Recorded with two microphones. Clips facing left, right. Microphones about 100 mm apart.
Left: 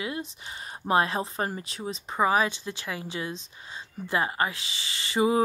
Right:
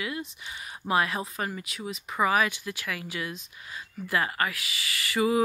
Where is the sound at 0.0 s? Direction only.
25° left (ahead or behind).